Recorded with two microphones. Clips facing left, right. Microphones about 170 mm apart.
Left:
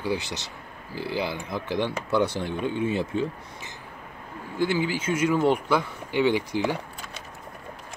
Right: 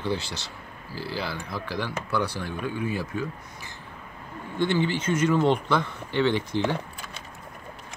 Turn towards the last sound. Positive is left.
turn(degrees=10)  # may be behind; listen again after turning